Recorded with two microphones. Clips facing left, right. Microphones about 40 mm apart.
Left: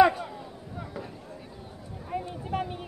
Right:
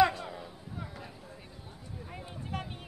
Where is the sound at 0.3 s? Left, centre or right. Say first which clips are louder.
Left 3 dB; centre.